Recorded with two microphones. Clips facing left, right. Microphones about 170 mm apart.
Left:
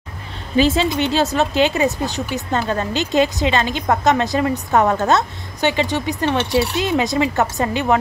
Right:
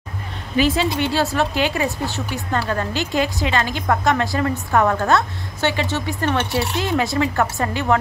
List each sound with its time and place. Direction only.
0.6 s a woman's voice: 25° left (ahead or behind)